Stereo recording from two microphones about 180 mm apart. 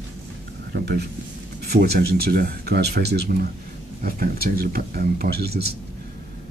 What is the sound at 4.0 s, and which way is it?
Speech, 50° right (ahead or behind).